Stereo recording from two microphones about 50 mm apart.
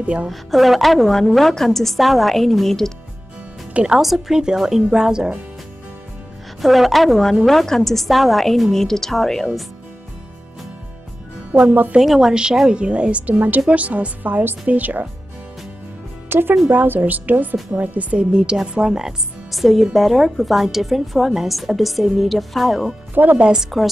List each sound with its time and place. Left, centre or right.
0.0 s a woman's voice: right
0.3 s speech: centre
3.7 s speech: centre
4.0 s speech: centre
6.6 s speech: centre
12.0 s a woman's voice: centre
13.3 s a woman's voice: right
16.3 s a woman's voice: right
18.3 s speech: centre
23.1 s a woman's voice: right
23.4 s speech: centre